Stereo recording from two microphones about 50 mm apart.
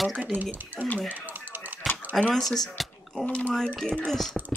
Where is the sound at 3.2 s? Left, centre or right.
Left.